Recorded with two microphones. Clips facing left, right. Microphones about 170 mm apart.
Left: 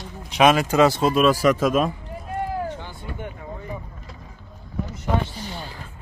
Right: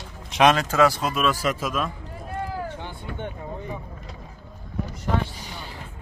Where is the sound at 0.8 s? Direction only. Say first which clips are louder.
Left 4 dB; 25° left (ahead or behind).